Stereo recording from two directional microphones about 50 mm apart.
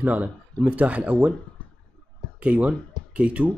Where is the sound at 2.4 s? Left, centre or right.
Right.